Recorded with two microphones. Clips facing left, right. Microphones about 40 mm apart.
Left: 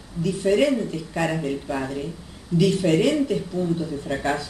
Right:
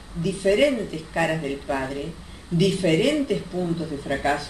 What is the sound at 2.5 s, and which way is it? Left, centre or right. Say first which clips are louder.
Speech: left 1 dB; right.